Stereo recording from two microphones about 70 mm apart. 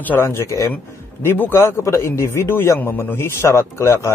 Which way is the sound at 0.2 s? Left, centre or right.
Left.